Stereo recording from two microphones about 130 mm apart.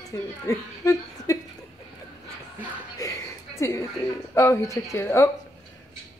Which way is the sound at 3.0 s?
25° left (ahead or behind).